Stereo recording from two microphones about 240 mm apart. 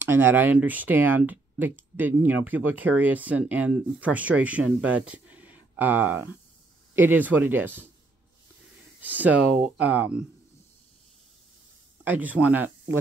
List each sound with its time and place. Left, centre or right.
0.0 s speech: centre
5.0 s a sound: centre
7.0 s speech: centre
9.0 s speech: centre
12.0 s speech: centre